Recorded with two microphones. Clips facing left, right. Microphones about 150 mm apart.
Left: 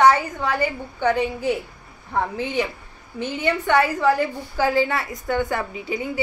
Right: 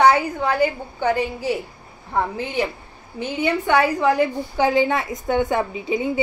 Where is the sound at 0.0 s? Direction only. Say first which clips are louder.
Right 1 dB; 10° right (ahead or behind).